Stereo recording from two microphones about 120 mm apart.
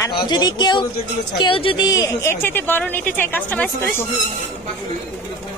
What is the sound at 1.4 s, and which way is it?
Speech, 45° left (ahead or behind).